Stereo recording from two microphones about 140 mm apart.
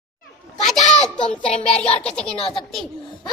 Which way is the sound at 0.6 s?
55° left (ahead or behind).